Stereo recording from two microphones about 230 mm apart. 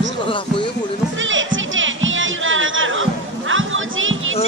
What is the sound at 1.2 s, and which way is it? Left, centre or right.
Music, right.